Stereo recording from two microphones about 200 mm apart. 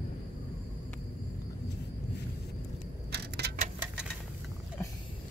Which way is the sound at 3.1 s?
55° right (ahead or behind).